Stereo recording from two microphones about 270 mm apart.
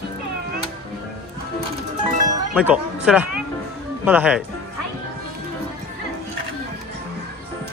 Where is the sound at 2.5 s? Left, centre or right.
Centre.